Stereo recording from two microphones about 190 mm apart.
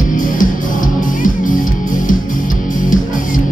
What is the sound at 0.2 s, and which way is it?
Music, 45° left (ahead or behind).